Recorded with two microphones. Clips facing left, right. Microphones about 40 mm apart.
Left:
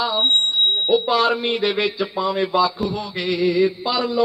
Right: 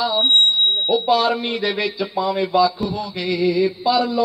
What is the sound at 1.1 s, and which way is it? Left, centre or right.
Speech, left.